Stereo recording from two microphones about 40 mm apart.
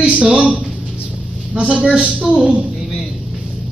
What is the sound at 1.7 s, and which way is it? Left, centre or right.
Speech, right.